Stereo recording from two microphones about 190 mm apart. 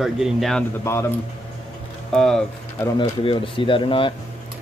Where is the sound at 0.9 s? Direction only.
15° left (ahead or behind).